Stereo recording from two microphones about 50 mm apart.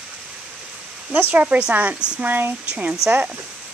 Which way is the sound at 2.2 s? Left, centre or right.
Right.